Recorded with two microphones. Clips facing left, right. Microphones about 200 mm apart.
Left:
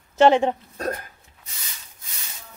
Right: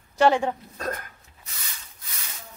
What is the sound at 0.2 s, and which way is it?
Speech, 20° left (ahead or behind).